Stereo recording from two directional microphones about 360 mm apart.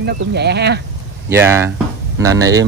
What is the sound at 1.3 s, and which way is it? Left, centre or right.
Speech, centre.